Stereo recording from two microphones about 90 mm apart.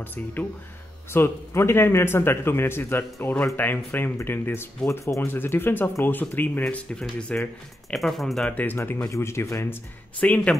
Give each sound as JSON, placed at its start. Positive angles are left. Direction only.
{"t": 0.0, "sound": "speech", "side_deg": 20}
{"t": 8.5, "sound": "speech", "side_deg": 20}
{"t": 10.2, "sound": "speech", "side_deg": 15}